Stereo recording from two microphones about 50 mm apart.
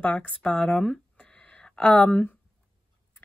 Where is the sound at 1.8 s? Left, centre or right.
Left.